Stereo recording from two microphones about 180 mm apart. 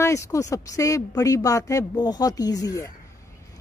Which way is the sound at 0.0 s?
15° left (ahead or behind).